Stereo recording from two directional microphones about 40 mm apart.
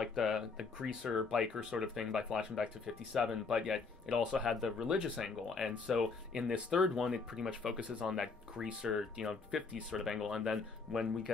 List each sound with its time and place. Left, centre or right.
0.0 s a sound: centre
0.7 s speech: centre
6.5 s speech: right
7.0 s speech: centre
9.6 s speech: right
9.8 s speech: centre